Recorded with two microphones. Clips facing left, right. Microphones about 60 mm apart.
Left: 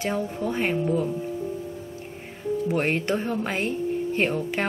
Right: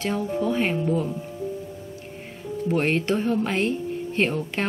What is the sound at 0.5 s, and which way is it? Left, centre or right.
Speech, centre.